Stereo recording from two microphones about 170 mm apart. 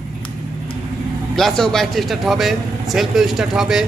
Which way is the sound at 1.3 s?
5° left (ahead or behind).